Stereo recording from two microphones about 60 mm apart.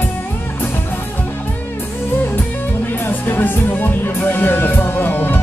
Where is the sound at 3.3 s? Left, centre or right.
Left.